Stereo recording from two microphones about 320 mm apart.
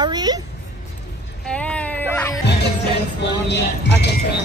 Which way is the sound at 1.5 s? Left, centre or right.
Centre.